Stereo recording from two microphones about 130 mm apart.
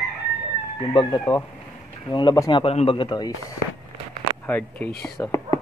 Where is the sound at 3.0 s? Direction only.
35° left (ahead or behind).